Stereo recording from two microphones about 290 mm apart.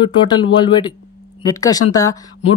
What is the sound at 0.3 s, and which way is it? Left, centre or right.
Speech, centre.